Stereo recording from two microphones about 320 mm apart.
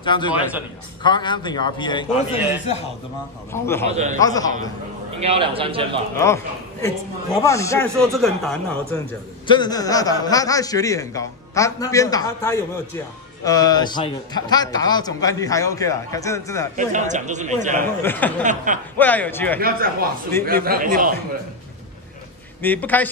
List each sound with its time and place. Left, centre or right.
0.0 s a man's voice: centre
0.3 s a man's voice: centre
1.0 s a man's voice: centre
2.3 s a man's voice: centre
3.9 s speech: right
4.2 s a man's voice: centre
5.2 s a man's voice: centre
6.1 s a man's voice: centre
16.7 s speech: right
18.0 s a man's voice: centre
18.4 s speech: right
18.9 s a man's voice: centre
19.6 s speech: right
22.6 s a man's voice: centre